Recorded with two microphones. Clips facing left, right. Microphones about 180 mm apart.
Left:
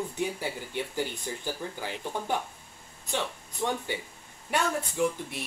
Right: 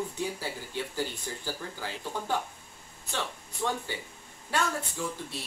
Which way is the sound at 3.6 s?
15° left (ahead or behind).